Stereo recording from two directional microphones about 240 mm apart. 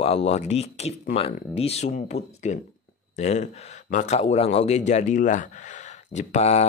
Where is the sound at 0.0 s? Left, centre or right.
Left.